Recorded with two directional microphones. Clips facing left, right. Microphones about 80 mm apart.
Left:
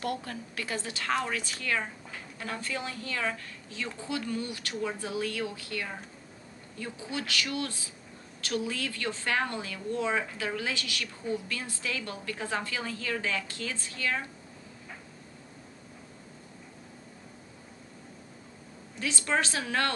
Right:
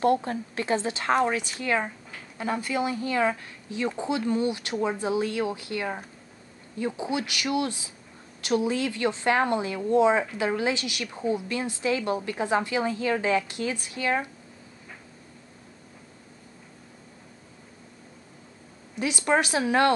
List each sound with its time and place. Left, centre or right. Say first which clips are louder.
0.0 s speech: right 11 dB; right
18.9 s speech: right 6 dB; centre